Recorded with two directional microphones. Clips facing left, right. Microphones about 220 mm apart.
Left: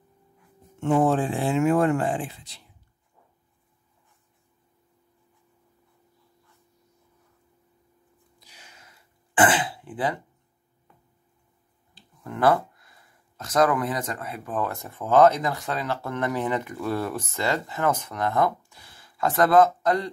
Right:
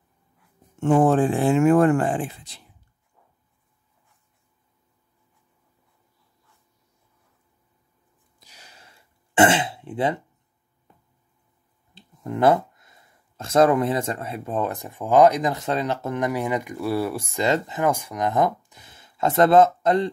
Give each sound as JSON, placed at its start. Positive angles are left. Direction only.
{"t": 0.7, "sound": "speech", "side_deg": -50}
{"t": 8.4, "sound": "throat clearing", "side_deg": -40}
{"t": 11.9, "sound": "speech", "side_deg": -20}